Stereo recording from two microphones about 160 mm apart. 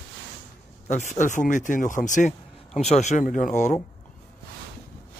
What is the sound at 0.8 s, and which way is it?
Speech, 50° left (ahead or behind).